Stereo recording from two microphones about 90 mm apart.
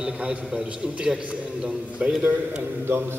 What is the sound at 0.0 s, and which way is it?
A man's voice, 10° right (ahead or behind).